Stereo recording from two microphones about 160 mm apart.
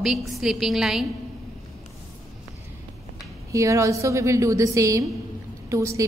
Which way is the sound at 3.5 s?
20° right (ahead or behind).